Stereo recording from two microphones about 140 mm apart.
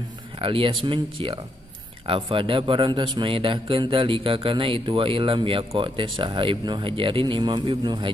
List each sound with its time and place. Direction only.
0.4 s a man's voice: 40° right (ahead or behind)